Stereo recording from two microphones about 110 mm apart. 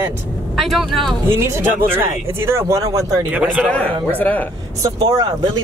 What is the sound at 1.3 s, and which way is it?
Speech, 25° right (ahead or behind).